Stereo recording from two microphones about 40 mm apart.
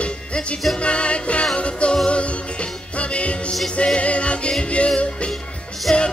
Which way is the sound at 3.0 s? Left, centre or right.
Left.